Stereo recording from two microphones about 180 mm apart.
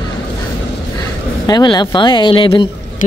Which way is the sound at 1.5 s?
25° left (ahead or behind).